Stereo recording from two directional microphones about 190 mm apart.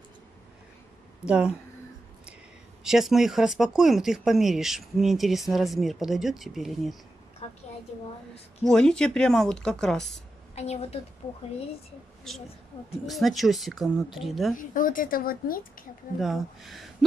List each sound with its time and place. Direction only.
1.2 s speech: 5° right (ahead or behind)
2.8 s speech: centre (ahead or behind)
7.4 s a sound: 35° left (ahead or behind)
8.6 s speech: 5° left (ahead or behind)
10.5 s a woman's voice: 35° left (ahead or behind)
13.0 s speech: centre (ahead or behind)
14.5 s speech: 45° left (ahead or behind)
16.2 s speech: centre (ahead or behind)